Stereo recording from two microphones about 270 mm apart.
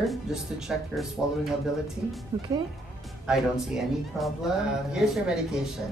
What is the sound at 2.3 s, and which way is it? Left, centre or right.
Speech, centre.